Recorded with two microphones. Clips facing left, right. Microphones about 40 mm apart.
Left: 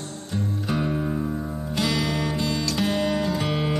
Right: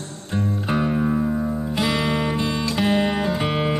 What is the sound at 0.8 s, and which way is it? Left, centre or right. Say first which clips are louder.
Music: right 6 dB; right.